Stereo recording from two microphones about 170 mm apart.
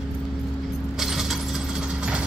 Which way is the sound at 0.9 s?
Centre (ahead or behind).